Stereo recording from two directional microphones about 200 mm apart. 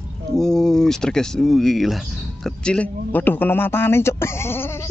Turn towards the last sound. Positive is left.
turn(degrees=10)  # may be behind; listen again after turning